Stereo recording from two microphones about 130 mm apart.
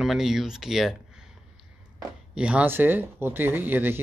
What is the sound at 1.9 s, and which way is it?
Speech, 5° right (ahead or behind).